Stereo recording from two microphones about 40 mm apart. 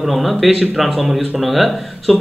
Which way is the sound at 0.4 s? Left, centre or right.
Centre.